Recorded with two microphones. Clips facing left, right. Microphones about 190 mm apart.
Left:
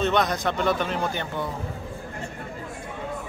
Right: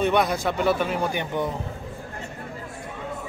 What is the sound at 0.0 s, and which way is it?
A man's voice, 10° right (ahead or behind).